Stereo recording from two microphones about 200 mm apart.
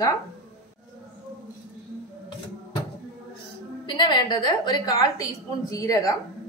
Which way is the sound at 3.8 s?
25° left (ahead or behind).